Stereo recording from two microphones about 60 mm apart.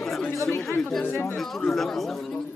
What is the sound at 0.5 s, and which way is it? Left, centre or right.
Speech, left.